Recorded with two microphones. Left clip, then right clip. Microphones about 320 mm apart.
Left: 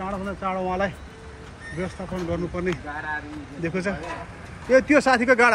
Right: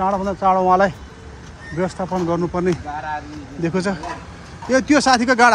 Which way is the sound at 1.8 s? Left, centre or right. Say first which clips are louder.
Right 10 dB; centre.